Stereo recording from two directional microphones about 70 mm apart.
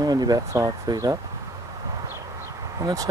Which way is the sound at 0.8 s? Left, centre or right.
Right.